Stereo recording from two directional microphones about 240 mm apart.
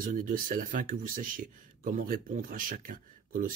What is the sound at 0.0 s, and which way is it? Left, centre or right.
Speech, right.